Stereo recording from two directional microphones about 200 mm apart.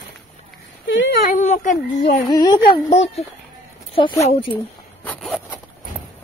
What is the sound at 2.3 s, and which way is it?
Speech, 20° left (ahead or behind).